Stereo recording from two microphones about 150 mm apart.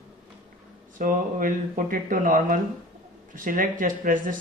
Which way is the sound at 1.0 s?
60° right (ahead or behind).